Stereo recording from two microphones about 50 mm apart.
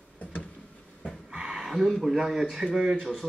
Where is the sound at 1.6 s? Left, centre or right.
Centre.